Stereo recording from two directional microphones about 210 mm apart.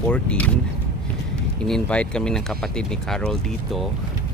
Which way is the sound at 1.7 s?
5° left (ahead or behind).